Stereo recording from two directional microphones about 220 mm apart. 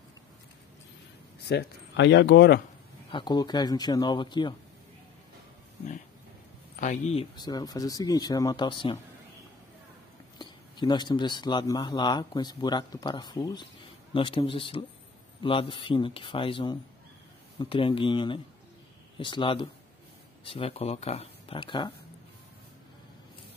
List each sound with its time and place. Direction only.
1.5 s speech: 50° left (ahead or behind)
3.1 s speech: 20° left (ahead or behind)
6.8 s speech: 30° left (ahead or behind)
10.4 s speech: 20° left (ahead or behind)